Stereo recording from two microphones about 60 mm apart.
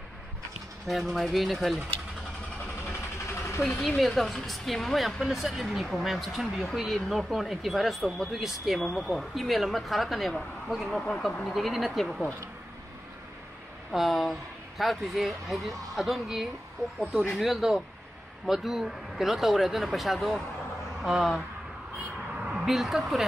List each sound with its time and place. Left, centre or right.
0.8 s speech: centre
3.3 s vehicle: left
3.7 s speech: centre
13.9 s speech: centre
22.7 s speech: centre